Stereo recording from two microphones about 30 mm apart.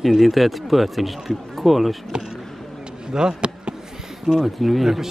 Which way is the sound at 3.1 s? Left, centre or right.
Right.